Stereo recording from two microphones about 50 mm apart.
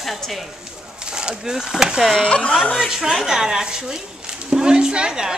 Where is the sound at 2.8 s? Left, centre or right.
Centre.